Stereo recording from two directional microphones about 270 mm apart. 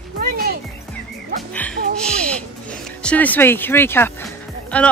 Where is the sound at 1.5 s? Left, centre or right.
Centre.